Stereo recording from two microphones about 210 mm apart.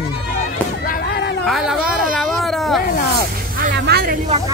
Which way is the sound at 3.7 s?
50° right (ahead or behind).